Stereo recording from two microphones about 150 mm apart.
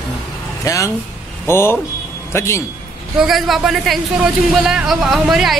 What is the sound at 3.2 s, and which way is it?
Speech, centre (ahead or behind).